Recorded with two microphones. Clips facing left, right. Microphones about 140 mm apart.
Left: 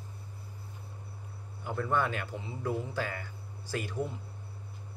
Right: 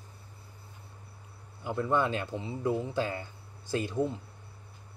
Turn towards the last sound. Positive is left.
turn(degrees=-20)  # may be behind; listen again after turning